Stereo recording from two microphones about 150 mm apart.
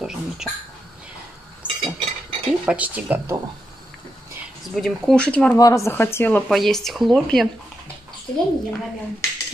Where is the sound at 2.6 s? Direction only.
5° right (ahead or behind).